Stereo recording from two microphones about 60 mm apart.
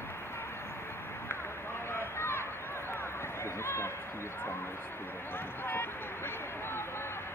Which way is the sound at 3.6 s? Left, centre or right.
Left.